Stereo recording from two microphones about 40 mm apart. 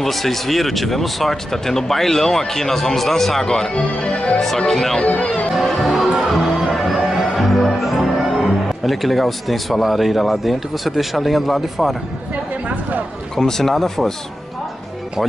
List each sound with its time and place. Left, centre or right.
0.0 s speech: centre
3.7 s speech: left
4.6 s speech: centre
6.0 s music: centre
13.4 s speech: centre